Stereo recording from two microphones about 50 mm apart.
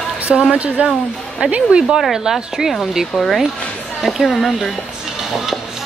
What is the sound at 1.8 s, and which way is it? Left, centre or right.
Speech, centre.